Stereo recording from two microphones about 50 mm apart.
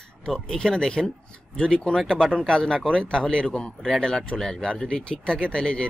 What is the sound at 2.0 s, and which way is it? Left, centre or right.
Speech, centre.